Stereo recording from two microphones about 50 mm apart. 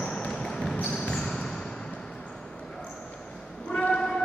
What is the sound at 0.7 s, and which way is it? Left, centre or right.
Basketball bounce, centre.